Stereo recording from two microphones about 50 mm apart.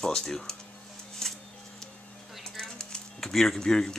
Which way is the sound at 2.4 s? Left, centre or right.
Centre.